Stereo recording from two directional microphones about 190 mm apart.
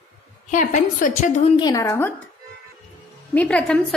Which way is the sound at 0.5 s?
40° left (ahead or behind).